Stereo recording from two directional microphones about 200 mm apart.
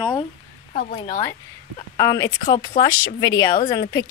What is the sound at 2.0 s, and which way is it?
A woman's voice, 15° left (ahead or behind).